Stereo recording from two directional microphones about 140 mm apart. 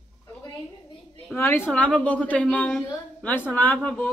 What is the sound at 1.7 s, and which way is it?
A woman's voice, 5° left (ahead or behind).